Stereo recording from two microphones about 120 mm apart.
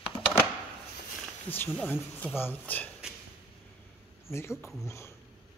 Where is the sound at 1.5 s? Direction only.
15° left (ahead or behind).